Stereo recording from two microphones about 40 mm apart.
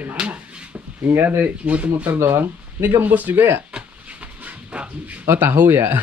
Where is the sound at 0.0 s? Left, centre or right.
Right.